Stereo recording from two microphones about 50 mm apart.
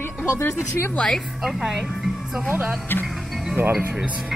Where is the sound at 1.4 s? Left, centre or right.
Centre.